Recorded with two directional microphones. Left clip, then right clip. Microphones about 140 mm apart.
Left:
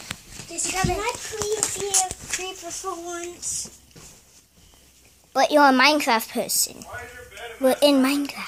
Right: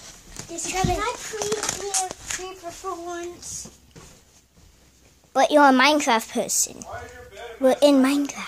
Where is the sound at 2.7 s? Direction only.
35° left (ahead or behind).